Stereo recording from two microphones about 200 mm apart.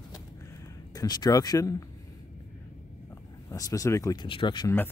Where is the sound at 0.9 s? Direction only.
20° left (ahead or behind).